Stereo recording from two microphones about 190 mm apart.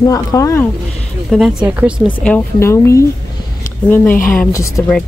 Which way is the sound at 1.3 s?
Centre (ahead or behind).